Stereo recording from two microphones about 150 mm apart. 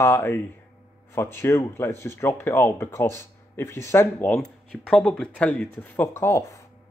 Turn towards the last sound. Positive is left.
turn(degrees=20)  # may be behind; listen again after turning